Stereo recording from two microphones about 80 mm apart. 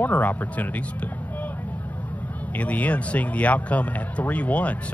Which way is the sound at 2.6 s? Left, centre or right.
Centre.